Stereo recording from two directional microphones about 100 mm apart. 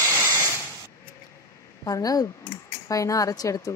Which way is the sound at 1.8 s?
35° left (ahead or behind).